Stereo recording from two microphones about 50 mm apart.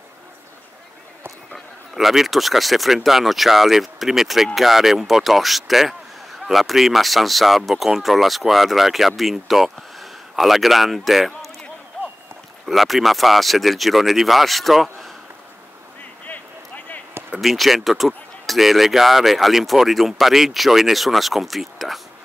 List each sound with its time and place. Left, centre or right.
1.5 s speech: centre
12.6 s speech: centre
16.3 s a sound: left
17.4 s speech: centre